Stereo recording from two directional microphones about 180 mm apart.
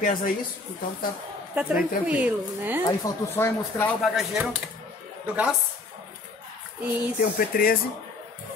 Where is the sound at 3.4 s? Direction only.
15° left (ahead or behind).